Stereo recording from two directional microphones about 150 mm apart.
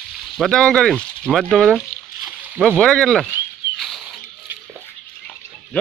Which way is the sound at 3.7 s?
Centre (ahead or behind).